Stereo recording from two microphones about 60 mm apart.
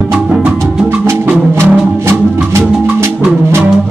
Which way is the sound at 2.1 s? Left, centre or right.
Right.